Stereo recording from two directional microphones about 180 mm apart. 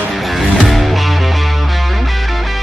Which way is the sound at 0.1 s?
Centre (ahead or behind).